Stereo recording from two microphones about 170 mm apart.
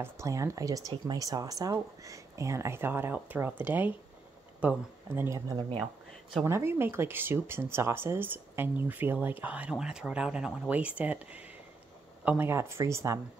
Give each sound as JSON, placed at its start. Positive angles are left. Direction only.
{"t": 0.0, "sound": "speech", "side_deg": -15}